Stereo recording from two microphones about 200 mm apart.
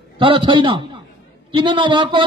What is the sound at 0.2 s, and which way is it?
Speech, 25° right (ahead or behind).